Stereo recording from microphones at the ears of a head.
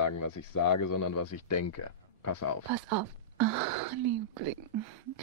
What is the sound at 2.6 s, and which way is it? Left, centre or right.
Speech, right.